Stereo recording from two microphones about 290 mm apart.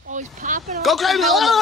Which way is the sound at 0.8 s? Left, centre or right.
Centre.